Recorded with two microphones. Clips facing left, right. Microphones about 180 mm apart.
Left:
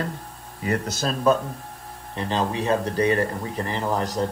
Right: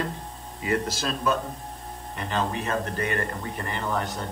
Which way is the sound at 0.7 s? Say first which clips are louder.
Left 1 dB; 35° left (ahead or behind).